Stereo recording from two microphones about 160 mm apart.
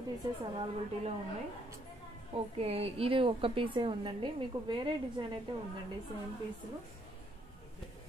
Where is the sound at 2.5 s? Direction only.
40° right (ahead or behind).